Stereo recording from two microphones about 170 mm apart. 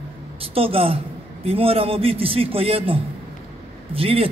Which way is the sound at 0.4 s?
35° right (ahead or behind).